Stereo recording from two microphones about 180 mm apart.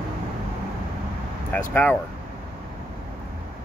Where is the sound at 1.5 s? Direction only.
10° left (ahead or behind).